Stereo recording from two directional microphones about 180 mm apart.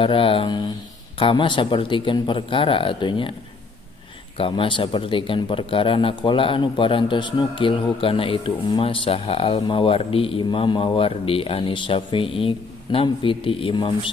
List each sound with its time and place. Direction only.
0.0 s a man's voice: 30° left (ahead or behind)
4.4 s a man's voice: 30° left (ahead or behind)